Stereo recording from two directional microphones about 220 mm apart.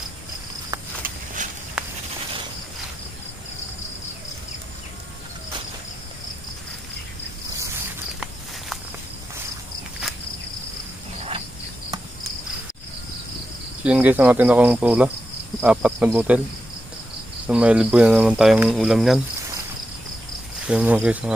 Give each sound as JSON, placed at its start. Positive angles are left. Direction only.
{"t": 1.0, "sound": "walk", "side_deg": -35}
{"t": 11.1, "sound": "cricket", "side_deg": -25}
{"t": 13.8, "sound": "speech", "side_deg": -5}
{"t": 17.5, "sound": "speech", "side_deg": -5}
{"t": 20.6, "sound": "speech", "side_deg": -5}